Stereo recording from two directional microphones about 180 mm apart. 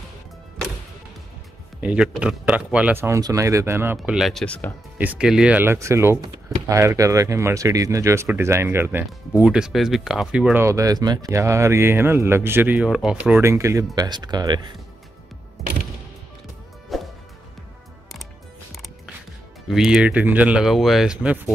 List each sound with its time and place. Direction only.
1.8 s speech: 5° right (ahead or behind)
4.9 s speech: 10° right (ahead or behind); by 14.8 s 25° right (ahead or behind)
16.9 s music: centre (ahead or behind)
19.7 s speech: 5° right (ahead or behind)